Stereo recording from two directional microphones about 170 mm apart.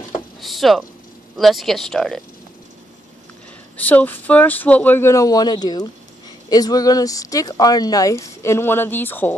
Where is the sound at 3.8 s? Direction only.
10° left (ahead or behind).